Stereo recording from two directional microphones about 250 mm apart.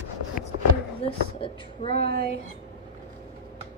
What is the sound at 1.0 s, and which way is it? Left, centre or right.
Speech, left.